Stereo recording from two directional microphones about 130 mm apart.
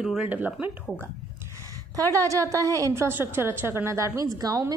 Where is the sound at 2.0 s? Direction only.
25° right (ahead or behind).